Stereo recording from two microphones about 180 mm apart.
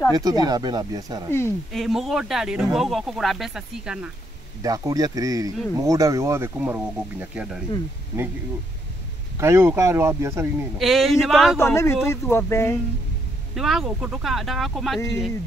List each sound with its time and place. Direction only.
0.1 s speech: 20° right (ahead or behind)
1.7 s speech: centre (ahead or behind)
4.6 s speech: 20° right (ahead or behind)
9.4 s speech: 15° right (ahead or behind)
10.8 s speech: centre (ahead or behind)
11.5 s speech: 15° left (ahead or behind)
13.6 s speech: centre (ahead or behind)